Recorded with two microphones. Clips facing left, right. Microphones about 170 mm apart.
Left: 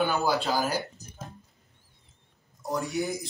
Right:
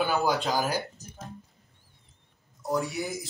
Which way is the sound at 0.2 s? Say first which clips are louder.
Even; 15° right (ahead or behind).